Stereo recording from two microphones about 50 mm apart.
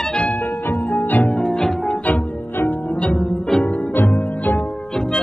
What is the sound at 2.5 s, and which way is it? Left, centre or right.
Music, left.